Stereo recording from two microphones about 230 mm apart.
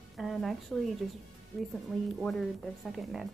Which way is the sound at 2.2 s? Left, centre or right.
Centre.